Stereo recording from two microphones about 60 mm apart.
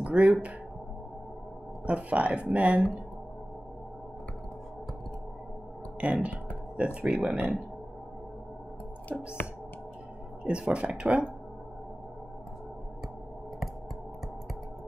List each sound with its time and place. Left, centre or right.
0.0 s speech: right
1.9 s speech: right
5.9 s speech: centre
9.1 s speech: centre
10.4 s speech: centre